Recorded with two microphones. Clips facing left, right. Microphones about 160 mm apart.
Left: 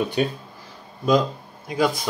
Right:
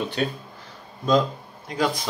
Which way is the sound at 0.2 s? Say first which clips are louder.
Left 3 dB; 10° left (ahead or behind).